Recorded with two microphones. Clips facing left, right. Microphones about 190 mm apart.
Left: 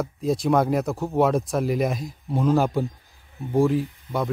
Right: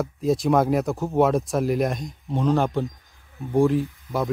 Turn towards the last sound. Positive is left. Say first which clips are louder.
# right 1 dB
turn(degrees=0)  # may be behind; listen again after turning